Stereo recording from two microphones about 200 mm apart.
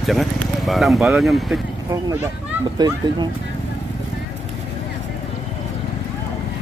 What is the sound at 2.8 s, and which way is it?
Speech, 20° right (ahead or behind).